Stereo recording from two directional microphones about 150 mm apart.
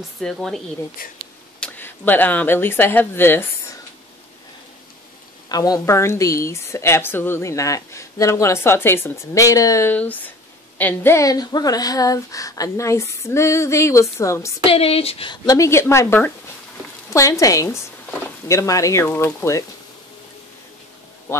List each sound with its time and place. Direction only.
0.2 s speech: 5° left (ahead or behind)
1.0 s speech: 75° left (ahead or behind)
1.6 s speech: 10° left (ahead or behind)
5.5 s a woman's voice: 25° left (ahead or behind)
14.7 s speech: 40° left (ahead or behind)
15.4 s a woman's voice: 20° left (ahead or behind)